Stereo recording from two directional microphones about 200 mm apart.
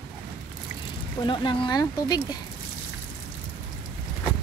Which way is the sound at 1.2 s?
25° left (ahead or behind).